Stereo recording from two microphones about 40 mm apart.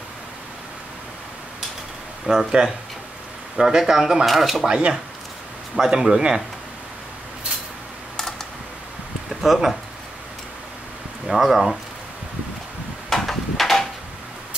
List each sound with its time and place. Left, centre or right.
2.3 s speech: right
3.5 s speech: centre
4.3 s speech: centre
5.8 s speech: centre
9.3 s speech: centre
11.2 s speech: centre
13.1 s a sound: centre